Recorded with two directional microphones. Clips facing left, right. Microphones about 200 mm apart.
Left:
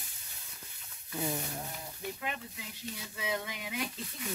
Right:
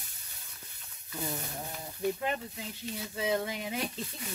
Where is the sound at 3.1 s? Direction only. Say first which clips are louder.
Right 7 dB; 35° right (ahead or behind).